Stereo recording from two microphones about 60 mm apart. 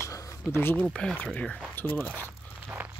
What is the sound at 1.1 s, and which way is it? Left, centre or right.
Speech, left.